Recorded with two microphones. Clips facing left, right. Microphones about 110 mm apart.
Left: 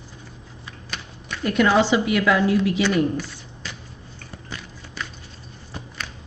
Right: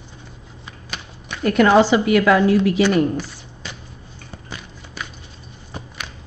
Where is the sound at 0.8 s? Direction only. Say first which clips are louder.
Right 1 dB; 15° right (ahead or behind).